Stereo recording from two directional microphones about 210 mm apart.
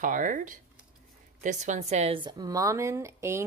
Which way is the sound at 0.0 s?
40° right (ahead or behind).